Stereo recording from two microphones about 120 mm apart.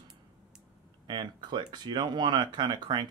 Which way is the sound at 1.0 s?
40° right (ahead or behind).